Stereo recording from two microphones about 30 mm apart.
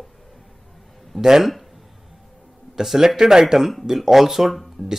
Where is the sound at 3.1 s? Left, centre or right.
Centre.